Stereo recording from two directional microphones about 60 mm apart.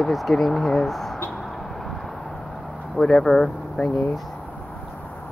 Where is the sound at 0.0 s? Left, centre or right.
Centre.